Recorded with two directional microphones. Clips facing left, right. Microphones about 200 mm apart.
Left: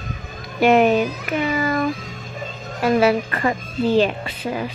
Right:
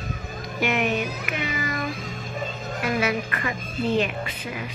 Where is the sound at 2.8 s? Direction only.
35° left (ahead or behind).